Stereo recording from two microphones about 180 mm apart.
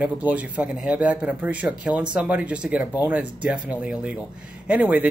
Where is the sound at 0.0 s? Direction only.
10° right (ahead or behind).